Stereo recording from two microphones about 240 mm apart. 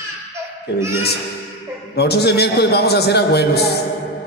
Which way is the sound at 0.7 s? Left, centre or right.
Left.